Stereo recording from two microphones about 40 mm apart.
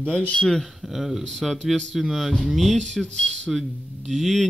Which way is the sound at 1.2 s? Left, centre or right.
Centre.